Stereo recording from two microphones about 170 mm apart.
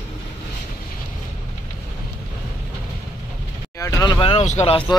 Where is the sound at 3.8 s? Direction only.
20° left (ahead or behind); by 4.8 s 40° left (ahead or behind).